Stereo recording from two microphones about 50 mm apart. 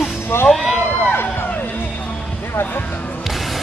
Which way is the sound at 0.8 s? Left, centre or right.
Left.